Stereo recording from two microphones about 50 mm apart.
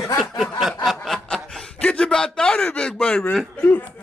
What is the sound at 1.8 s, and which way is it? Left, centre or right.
Speech, left.